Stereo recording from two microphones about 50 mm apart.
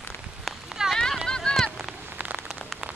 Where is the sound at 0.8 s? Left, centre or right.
Centre.